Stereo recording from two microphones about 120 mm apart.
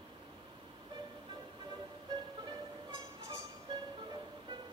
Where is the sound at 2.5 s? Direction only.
30° right (ahead or behind).